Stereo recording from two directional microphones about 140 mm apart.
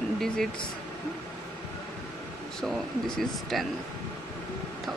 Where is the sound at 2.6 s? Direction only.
5° left (ahead or behind).